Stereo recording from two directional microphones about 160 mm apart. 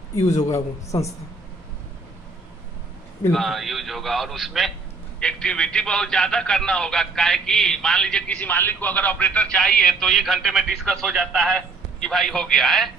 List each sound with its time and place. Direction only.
0.5 s a man's voice: 20° left (ahead or behind)
3.3 s speech: centre (ahead or behind)